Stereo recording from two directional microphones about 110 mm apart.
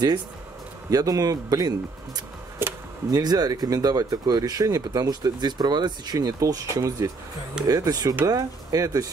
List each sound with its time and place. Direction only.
0.8 s speech: 35° right (ahead or behind)
2.6 s a sound: 20° right (ahead or behind)
3.1 s speech: 35° right (ahead or behind)